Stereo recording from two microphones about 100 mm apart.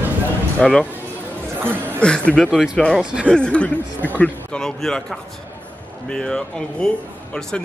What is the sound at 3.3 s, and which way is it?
Speech, 10° left (ahead or behind).